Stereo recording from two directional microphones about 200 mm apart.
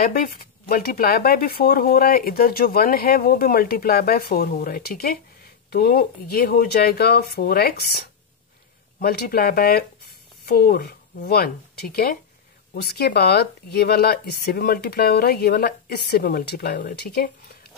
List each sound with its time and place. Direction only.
0.0 s speech: 45° left (ahead or behind)
9.0 s speech: 50° left (ahead or behind)